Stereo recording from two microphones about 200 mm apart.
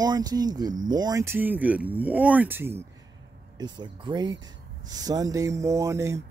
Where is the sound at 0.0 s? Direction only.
20° right (ahead or behind).